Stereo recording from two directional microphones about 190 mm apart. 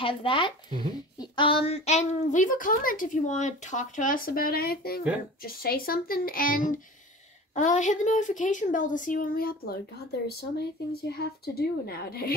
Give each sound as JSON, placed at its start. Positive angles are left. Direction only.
{"t": 0.0, "sound": "a woman's voice", "side_deg": 25}